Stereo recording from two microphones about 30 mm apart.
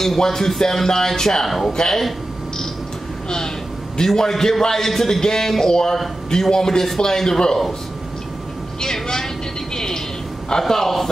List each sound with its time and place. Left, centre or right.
0.0 s a man's voice: centre
3.3 s a man's voice: left
8.8 s vehicle: centre
10.7 s a man's voice: centre